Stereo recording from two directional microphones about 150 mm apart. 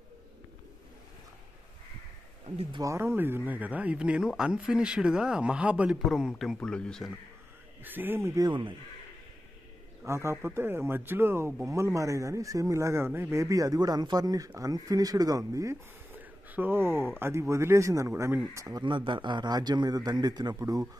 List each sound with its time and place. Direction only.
2.4 s speech: 40° right (ahead or behind)
2.8 s a man's voice: 20° right (ahead or behind); by 7.1 s 5° left (ahead or behind)
7.8 s a man's voice: 15° right (ahead or behind)
8.5 s speech: 35° right (ahead or behind)
10.0 s a man's voice: 20° right (ahead or behind)